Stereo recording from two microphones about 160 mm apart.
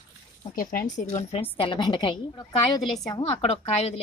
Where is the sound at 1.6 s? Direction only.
30° left (ahead or behind).